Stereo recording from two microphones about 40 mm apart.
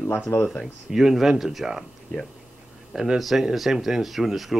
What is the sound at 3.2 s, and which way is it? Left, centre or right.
Speech, centre.